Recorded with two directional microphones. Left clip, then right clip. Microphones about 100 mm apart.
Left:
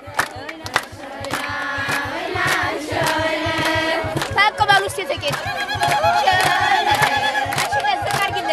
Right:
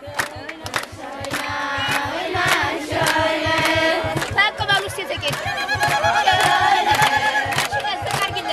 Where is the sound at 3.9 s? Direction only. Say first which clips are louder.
Left 1 dB; 25° left (ahead or behind).